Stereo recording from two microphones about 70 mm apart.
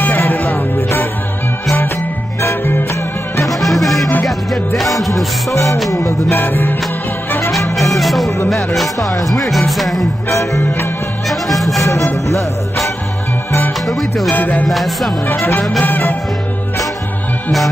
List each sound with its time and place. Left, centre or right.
0.0 s music: left
2.6 s music: left
3.4 s music: centre
5.5 s music: left
6.5 s music: left
7.7 s music: centre
10.3 s music: left
10.6 s music: left
11.2 s music: centre
14.3 s music: left
14.7 s music: centre
15.3 s music: left